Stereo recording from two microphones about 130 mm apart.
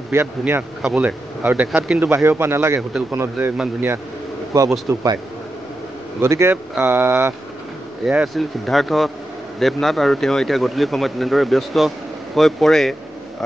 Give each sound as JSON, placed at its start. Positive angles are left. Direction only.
{"t": 0.1, "sound": "speech", "side_deg": -20}
{"t": 4.6, "sound": "speech", "side_deg": -25}
{"t": 6.2, "sound": "speech", "side_deg": -20}
{"t": 8.0, "sound": "speech", "side_deg": 0}